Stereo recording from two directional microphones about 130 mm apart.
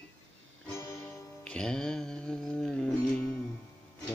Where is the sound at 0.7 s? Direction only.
20° left (ahead or behind).